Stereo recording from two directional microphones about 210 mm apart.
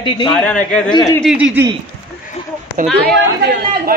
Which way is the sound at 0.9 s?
15° left (ahead or behind).